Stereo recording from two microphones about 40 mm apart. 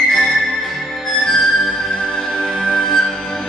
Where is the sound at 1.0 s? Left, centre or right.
Centre.